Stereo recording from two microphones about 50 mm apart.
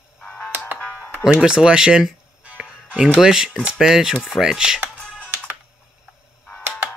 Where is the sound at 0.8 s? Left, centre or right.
Left.